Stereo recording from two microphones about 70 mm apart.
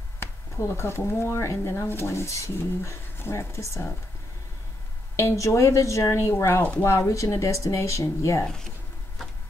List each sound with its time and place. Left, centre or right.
0.2 s speech: left
5.1 s speech: left
8.5 s speech: centre